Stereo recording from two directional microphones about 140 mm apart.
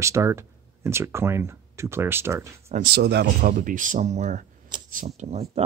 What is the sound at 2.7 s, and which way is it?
Speech, 50° right (ahead or behind).